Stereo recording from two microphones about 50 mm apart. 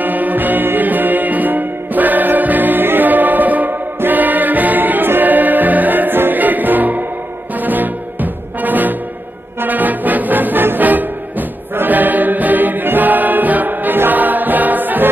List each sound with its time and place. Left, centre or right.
0.0 s music: right